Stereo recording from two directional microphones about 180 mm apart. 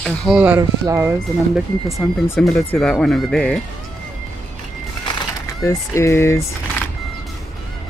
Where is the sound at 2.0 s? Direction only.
15° left (ahead or behind).